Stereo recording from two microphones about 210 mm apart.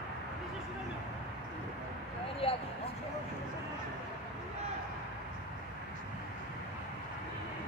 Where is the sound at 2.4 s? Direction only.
25° left (ahead or behind).